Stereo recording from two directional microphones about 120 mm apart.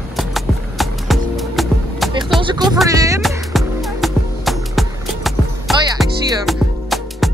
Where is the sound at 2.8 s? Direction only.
25° right (ahead or behind).